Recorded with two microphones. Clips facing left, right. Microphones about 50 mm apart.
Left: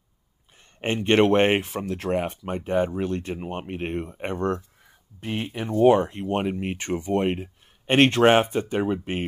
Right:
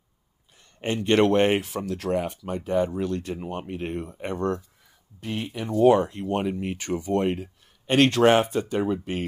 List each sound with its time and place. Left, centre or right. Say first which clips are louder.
0.7 s speech: left 1 dB; left